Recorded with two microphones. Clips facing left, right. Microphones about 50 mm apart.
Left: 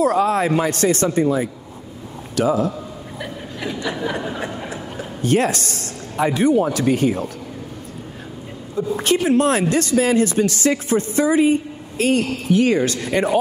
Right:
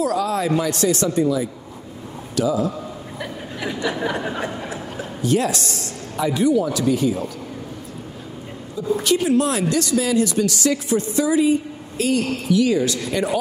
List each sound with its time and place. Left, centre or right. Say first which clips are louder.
0.0 s speech: left 4 dB; left
3.2 s a sound: even; centre
5.2 s speech: left 2 dB; left
8.9 s speech: left 1 dB; left